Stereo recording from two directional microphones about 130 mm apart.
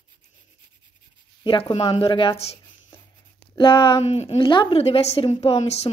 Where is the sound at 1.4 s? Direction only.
40° left (ahead or behind).